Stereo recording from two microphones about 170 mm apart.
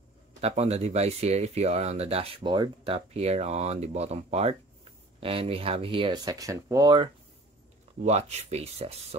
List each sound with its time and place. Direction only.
0.4 s speech: 40° right (ahead or behind); by 7.1 s 25° right (ahead or behind)
8.0 s speech: 40° right (ahead or behind)